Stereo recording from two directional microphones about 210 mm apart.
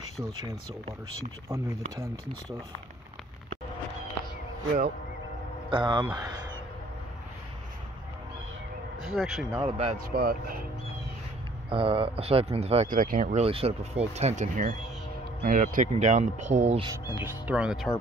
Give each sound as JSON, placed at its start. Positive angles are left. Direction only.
{"t": 1.5, "sound": "speech", "side_deg": -15}
{"t": 5.7, "sound": "speech", "side_deg": -20}
{"t": 9.0, "sound": "speech", "side_deg": 0}
{"t": 9.7, "sound": "speech", "side_deg": -30}
{"t": 10.1, "sound": "speech", "side_deg": -45}
{"t": 11.7, "sound": "speech", "side_deg": -25}
{"t": 17.2, "sound": "speech", "side_deg": -10}